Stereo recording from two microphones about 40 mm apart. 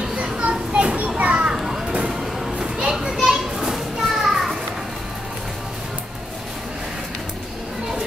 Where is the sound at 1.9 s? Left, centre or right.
Right.